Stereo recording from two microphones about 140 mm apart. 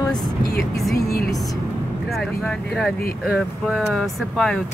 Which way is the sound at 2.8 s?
Centre (ahead or behind).